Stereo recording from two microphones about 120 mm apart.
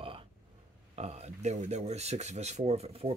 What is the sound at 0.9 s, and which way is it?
Speech, 60° right (ahead or behind).